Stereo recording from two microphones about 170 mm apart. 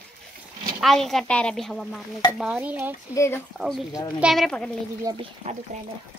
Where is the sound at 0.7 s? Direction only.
Centre (ahead or behind).